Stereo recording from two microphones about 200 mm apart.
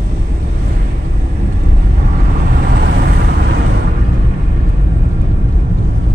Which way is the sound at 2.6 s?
50° right (ahead or behind).